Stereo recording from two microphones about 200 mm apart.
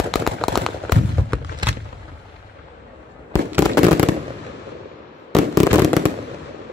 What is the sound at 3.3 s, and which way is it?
Fireworks, 15° left (ahead or behind).